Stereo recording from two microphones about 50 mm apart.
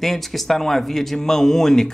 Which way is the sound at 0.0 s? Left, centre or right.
Centre.